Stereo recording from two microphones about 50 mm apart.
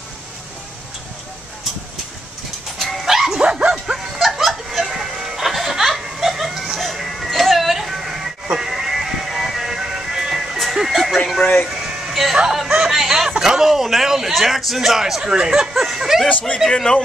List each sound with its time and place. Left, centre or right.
2.8 s dog: centre
3.4 s dog: centre
4.2 s goat: centre
6.8 s music: centre
11.7 s a sound: centre
15.3 s speech: centre
16.5 s a man's voice: centre